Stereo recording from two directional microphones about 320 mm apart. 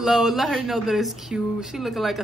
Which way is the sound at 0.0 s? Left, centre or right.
Centre.